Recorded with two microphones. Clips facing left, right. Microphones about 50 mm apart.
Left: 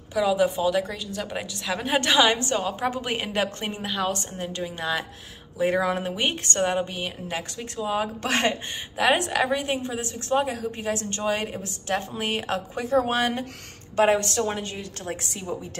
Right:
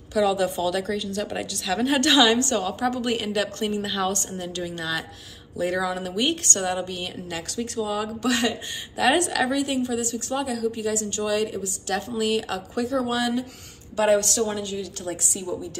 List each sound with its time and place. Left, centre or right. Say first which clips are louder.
0.1 s a woman's voice: even; centre
3.8 s a woman's voice: right 1 dB; centre
5.6 s a woman's voice: left 2 dB; left
8.2 s a woman's voice: right 2 dB; left
8.9 s a woman's voice: right 1 dB; left
14.0 s a woman's voice: right 2 dB; left